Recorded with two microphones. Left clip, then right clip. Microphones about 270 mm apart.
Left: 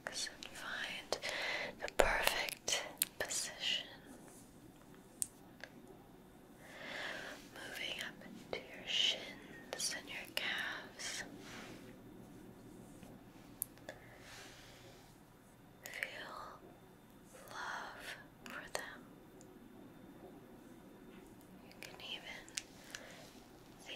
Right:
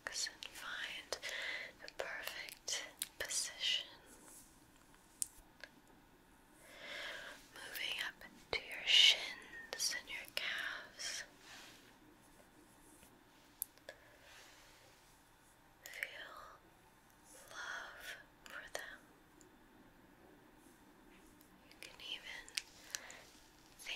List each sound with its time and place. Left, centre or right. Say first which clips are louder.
0.0 s whispering: even; centre
1.8 s whispering: left 12 dB; left; by 3.1 s centre
3.2 s whispering: right 2 dB; centre
6.8 s whispering: left 2 dB; centre
8.5 s whispering: right 7 dB; right
9.7 s whispering: right 1 dB; centre
15.8 s whispering: left 2 dB; centre
21.7 s whispering: left 1 dB; centre; by 23.0 s right